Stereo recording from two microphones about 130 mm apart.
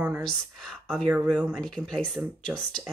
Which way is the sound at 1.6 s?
5° left (ahead or behind).